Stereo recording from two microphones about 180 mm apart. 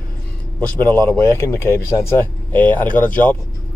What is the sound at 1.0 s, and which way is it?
Speech, 15° left (ahead or behind).